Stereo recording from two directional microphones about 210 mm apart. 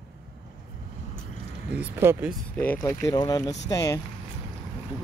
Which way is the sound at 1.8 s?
10° right (ahead or behind).